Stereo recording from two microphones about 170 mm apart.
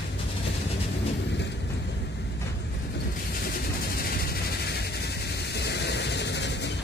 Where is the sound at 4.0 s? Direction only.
65° left (ahead or behind); by 6.7 s 90° left.